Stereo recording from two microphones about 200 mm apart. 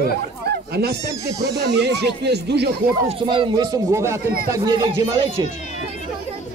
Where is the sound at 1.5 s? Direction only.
55° right (ahead or behind).